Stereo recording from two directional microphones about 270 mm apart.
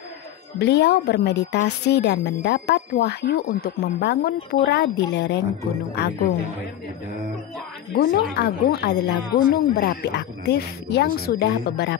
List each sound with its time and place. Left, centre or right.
0.6 s speech: left
7.9 s speech: left